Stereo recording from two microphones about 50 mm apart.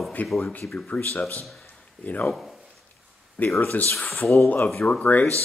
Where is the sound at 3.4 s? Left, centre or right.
Left.